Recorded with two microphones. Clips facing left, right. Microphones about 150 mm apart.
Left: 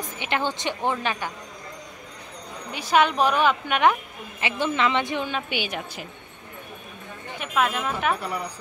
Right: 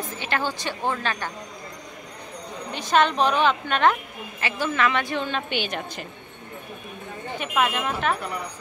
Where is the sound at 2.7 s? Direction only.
10° left (ahead or behind).